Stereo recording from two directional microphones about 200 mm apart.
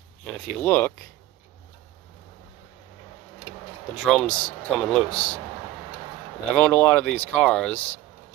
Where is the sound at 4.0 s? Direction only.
Centre (ahead or behind).